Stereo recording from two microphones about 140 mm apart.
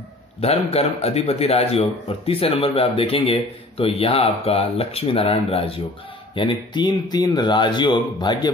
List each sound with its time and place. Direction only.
0.4 s speech: 45° left (ahead or behind); by 8.5 s 30° left (ahead or behind)